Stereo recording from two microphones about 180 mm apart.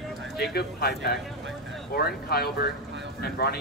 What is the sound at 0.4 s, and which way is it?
Speech, 60° left (ahead or behind).